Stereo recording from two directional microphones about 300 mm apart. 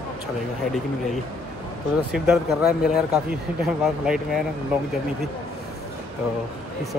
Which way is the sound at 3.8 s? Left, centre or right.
Centre.